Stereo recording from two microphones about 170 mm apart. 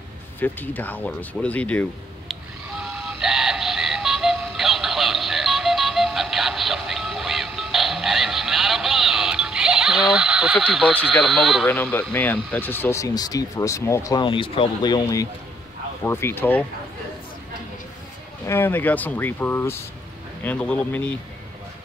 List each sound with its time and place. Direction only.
0.4 s speech: 10° left (ahead or behind)
2.8 s music: centre (ahead or behind)
11.1 s speech: centre (ahead or behind)
11.6 s speech: 10° left (ahead or behind)
18.4 s speech: 15° left (ahead or behind)